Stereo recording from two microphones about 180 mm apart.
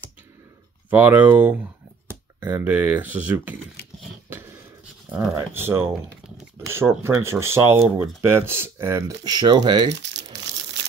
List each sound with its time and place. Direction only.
0.8 s speech: 10° right (ahead or behind)
4.3 s a sound: 10° right (ahead or behind)
5.3 s speech: 15° right (ahead or behind)
9.9 s crumpling: 75° right (ahead or behind)